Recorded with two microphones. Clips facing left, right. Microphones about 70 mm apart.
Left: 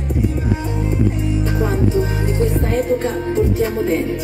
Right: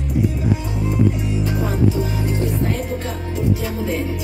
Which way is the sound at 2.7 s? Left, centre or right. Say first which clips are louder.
Left 8 dB; left.